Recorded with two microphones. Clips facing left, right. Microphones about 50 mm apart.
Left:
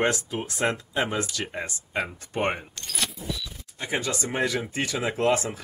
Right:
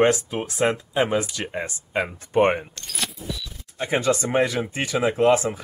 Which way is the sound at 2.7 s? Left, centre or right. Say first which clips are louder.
Right 1 dB; centre.